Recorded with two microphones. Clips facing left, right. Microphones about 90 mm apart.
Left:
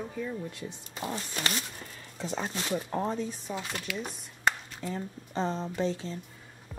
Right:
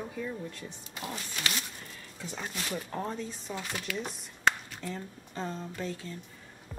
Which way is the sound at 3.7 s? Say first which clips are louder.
Even; centre (ahead or behind).